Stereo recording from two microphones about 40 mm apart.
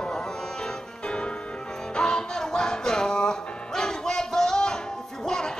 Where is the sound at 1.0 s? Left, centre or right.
Left.